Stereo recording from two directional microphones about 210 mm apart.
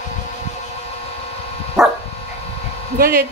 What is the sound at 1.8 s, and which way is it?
Dog, centre (ahead or behind).